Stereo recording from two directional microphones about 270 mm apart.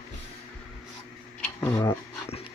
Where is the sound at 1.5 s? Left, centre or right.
Centre.